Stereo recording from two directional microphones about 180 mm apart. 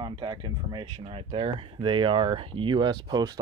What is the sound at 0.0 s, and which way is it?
Speech, 25° right (ahead or behind).